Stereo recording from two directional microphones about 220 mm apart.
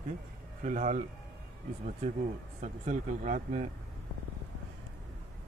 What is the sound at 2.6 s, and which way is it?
A man's voice, 35° right (ahead or behind).